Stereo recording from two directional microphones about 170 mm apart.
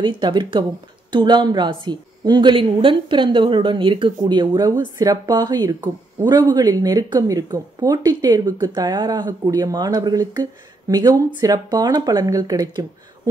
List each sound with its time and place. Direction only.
0.0 s speech: 25° right (ahead or behind)